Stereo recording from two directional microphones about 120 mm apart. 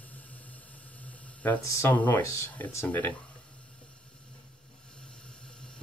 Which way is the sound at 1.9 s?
15° left (ahead or behind).